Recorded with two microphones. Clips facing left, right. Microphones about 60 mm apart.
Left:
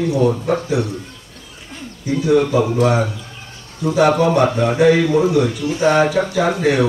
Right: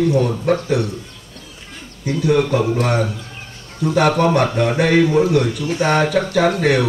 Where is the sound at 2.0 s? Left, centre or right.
Right.